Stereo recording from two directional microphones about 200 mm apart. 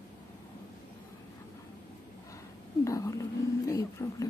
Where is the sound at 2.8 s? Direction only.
15° left (ahead or behind).